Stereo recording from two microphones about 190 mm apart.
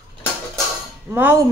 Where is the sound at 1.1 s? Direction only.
15° right (ahead or behind).